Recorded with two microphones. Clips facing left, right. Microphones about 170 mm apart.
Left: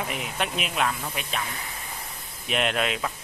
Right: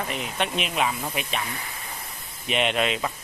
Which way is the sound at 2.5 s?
Centre (ahead or behind).